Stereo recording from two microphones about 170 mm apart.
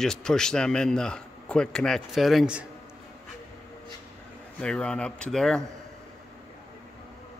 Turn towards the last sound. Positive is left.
turn(degrees=5)  # may be behind; listen again after turning